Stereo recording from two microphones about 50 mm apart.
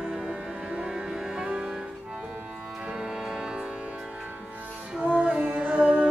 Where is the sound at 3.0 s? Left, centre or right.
Centre.